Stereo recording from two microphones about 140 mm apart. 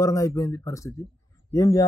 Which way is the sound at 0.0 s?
25° left (ahead or behind).